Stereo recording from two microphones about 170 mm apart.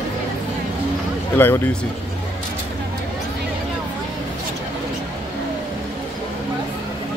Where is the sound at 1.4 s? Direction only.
10° left (ahead or behind).